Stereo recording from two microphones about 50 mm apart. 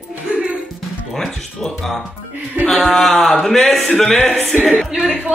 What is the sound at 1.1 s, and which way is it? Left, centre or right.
A man's voice, centre.